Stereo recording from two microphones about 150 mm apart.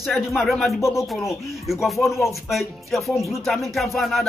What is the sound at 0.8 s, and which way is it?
Speech, 20° left (ahead or behind).